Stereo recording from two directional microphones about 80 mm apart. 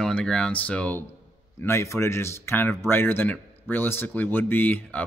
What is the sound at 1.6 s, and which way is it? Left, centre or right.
A man's voice, left.